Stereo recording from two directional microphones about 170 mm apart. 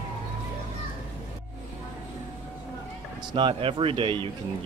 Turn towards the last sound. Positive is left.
turn(degrees=-30)  # may be behind; listen again after turning